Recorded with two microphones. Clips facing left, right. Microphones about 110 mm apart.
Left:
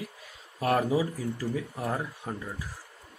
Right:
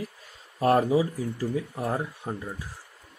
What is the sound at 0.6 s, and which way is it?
Speech, 25° right (ahead or behind).